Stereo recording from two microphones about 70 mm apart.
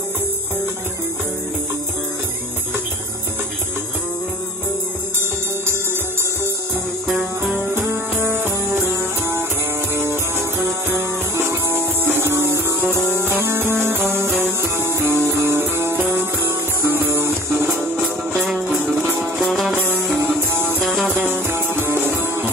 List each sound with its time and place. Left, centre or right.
7.5 s music: right
18.5 s music: centre
19.9 s music: right
20.8 s music: centre
21.1 s music: right